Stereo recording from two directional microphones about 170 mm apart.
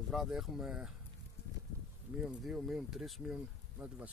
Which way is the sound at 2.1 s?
Centre (ahead or behind).